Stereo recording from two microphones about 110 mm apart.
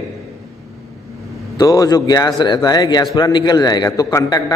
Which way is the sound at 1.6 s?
30° left (ahead or behind).